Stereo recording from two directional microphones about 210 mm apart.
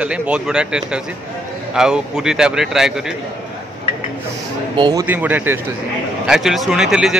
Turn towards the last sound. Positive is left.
turn(degrees=-5)  # may be behind; listen again after turning